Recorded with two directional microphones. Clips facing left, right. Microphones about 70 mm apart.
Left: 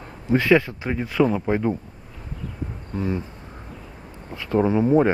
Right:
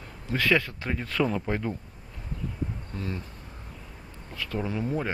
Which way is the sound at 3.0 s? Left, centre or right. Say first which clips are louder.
Left 10 dB; left.